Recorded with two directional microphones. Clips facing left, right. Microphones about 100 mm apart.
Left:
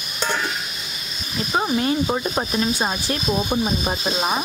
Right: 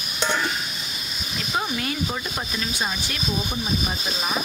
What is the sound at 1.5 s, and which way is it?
Speech, 25° left (ahead or behind).